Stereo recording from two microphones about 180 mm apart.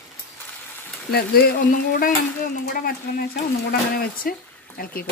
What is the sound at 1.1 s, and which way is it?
Speech, 55° left (ahead or behind).